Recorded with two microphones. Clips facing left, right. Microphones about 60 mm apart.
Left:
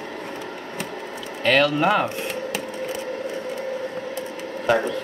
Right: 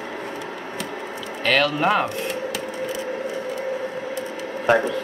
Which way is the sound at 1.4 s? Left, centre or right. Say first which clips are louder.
Left 1 dB; centre.